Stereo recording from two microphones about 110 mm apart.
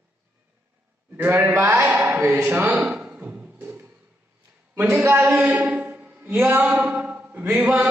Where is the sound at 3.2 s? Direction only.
10° right (ahead or behind).